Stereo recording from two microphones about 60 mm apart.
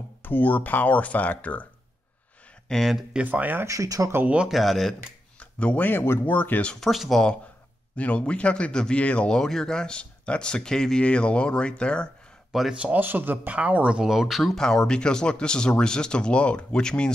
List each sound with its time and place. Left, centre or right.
0.2 s speech: left
2.7 s speech: centre
3.3 s speech: right
3.6 s speech: right
4.5 s speech: centre
5.4 s a sound: left
5.8 s speech: left
6.8 s speech: centre
7.9 s speech: left
9.4 s speech: centre
12.5 s speech: centre
13.0 s speech: right
14.0 s speech: centre